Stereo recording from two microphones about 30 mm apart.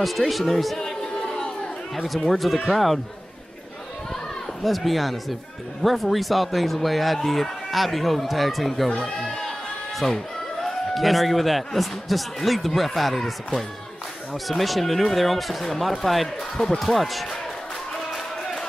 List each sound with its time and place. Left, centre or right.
0.0 s speech: centre
1.0 s chatter: centre
2.3 s speech: centre
4.6 s speech: centre
9.2 s speech: left
9.9 s a man's voice: centre
14.3 s speech: centre
16.5 s speech: centre
16.8 s speech: centre